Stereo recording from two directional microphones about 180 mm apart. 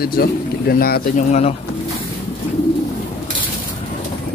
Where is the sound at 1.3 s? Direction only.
35° left (ahead or behind).